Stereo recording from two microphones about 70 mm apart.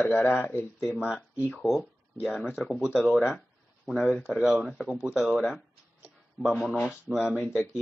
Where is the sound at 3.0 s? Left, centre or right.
Centre.